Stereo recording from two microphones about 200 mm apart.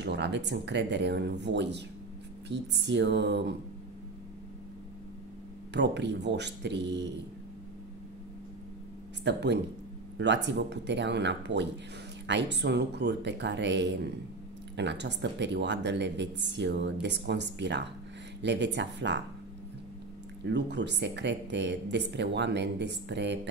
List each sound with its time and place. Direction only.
0.0 s speech: 60° right (ahead or behind)
5.7 s speech: 60° right (ahead or behind)
9.2 s speech: 60° right (ahead or behind)
20.4 s speech: 60° right (ahead or behind)